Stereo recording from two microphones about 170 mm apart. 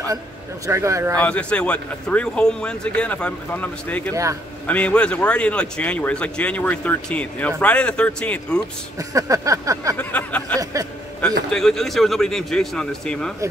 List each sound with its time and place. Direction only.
0.7 s speech: 15° right (ahead or behind)
1.1 s speech: 5° left (ahead or behind)
4.1 s speech: 20° right (ahead or behind)
4.6 s speech: 10° left (ahead or behind)
8.9 s a sound: 20° right (ahead or behind)
9.9 s speech: 10° left (ahead or behind)
10.6 s a sound: 20° right (ahead or behind)
11.5 s speech: centre (ahead or behind)